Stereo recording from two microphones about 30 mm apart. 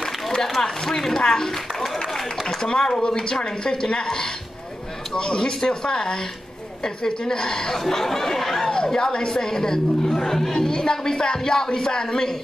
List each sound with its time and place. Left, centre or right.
0.0 s a sound: centre
0.6 s speech: centre
5.1 s speech: left
7.7 s speech: centre
8.6 s speech: left